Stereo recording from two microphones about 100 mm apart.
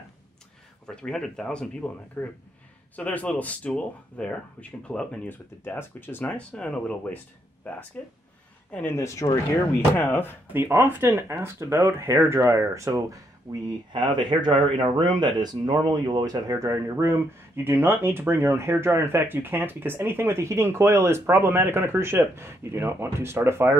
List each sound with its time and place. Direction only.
0.8 s speech: 5° left (ahead or behind)
5.6 s speech: 20° left (ahead or behind)
8.9 s speech: 30° left (ahead or behind)
10.5 s speech: 25° right (ahead or behind)
13.9 s speech: 50° right (ahead or behind); by 23.8 s 25° right (ahead or behind)